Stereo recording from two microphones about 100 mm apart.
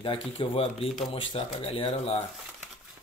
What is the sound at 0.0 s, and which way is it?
Speech, 60° left (ahead or behind).